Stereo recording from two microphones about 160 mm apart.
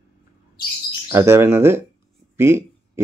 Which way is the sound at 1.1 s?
15° right (ahead or behind).